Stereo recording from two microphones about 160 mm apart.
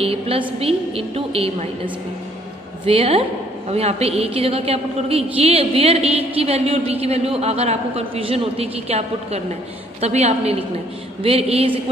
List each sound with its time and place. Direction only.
0.0 s a woman's voice: 35° right (ahead or behind)
2.8 s a woman's voice: 35° right (ahead or behind)